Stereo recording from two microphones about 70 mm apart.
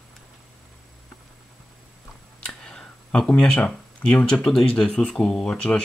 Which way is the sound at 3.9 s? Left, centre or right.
Centre.